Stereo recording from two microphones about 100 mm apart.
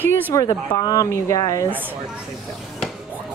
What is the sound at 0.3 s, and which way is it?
Speech, 40° left (ahead or behind).